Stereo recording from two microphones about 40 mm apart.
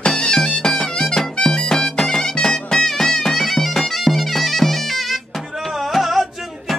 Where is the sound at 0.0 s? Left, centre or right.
Centre.